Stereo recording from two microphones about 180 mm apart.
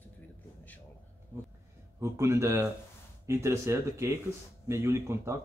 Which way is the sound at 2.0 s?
15° right (ahead or behind).